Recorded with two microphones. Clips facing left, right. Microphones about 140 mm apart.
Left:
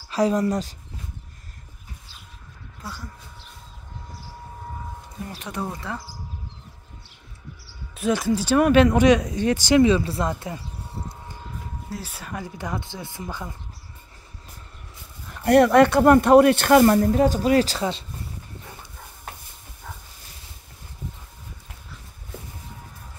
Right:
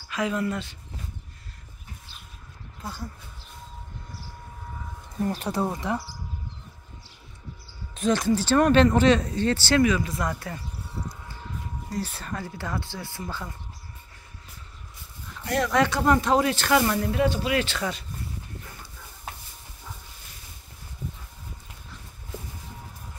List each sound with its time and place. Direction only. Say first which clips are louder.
0.1 s speech: left 6 dB; 35° left (ahead or behind)
5.2 s speech: right 5 dB; 40° right (ahead or behind); by 6.0 s 20° right (ahead or behind)
7.9 s speech: left 1 dB; 5° left (ahead or behind)
9.8 s speech: left 4 dB; 30° left (ahead or behind)
11.9 s speech: right 2 dB; 10° left (ahead or behind)
15.4 s speech: left 9 dB; 60° left (ahead or behind); by 18.0 s 30° left (ahead or behind)